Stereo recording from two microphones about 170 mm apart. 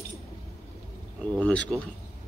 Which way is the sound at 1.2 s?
10° left (ahead or behind).